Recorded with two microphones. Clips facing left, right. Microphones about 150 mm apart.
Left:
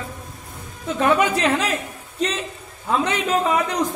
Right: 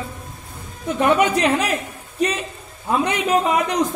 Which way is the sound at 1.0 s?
15° right (ahead or behind).